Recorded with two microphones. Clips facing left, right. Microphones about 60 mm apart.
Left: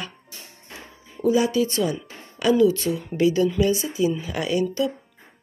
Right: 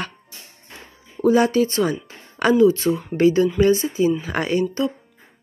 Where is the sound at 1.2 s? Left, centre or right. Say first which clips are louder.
Right 4 dB; right.